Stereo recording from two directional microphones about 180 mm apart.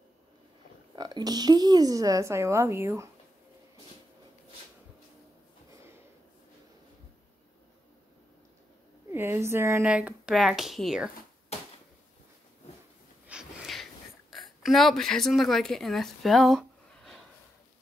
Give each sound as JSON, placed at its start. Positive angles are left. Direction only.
{"t": 0.9, "sound": "a woman's voice", "side_deg": -25}
{"t": 9.1, "sound": "speech", "side_deg": -15}
{"t": 13.3, "sound": "snort", "side_deg": -5}
{"t": 14.3, "sound": "a woman's voice", "side_deg": 0}